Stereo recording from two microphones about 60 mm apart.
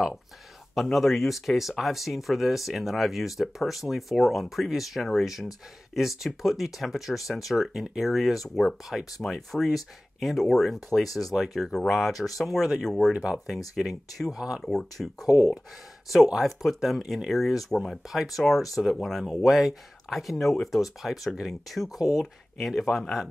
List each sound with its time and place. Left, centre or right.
0.9 s speech: centre
13.1 s speech: centre
13.7 s speech: centre
14.6 s speech: centre
16.3 s speech: centre
21.9 s speech: left
22.6 s speech: centre